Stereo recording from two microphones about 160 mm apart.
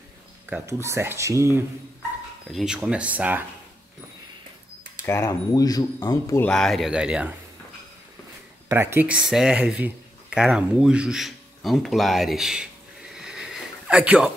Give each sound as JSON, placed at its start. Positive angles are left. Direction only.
{"t": 0.5, "sound": "speech", "side_deg": -15}
{"t": 2.5, "sound": "speech", "side_deg": -5}
{"t": 5.0, "sound": "speech", "side_deg": 15}
{"t": 6.5, "sound": "speech", "side_deg": 0}
{"t": 8.6, "sound": "speech", "side_deg": -15}
{"t": 13.1, "sound": "sniff", "side_deg": 0}